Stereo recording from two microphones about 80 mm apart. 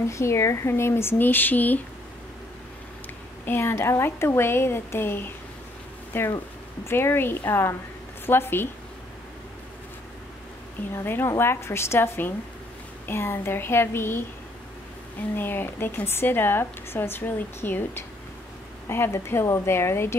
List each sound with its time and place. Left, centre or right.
0.0 s speech: left
3.4 s speech: left
11.0 s speech: left
15.3 s speech: left